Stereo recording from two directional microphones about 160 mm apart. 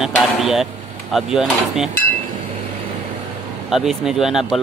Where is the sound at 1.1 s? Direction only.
Centre (ahead or behind).